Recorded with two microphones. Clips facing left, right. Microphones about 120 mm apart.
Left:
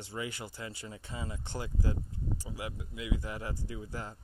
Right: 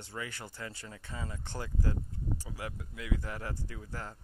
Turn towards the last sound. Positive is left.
turn(degrees=10)  # may be behind; listen again after turning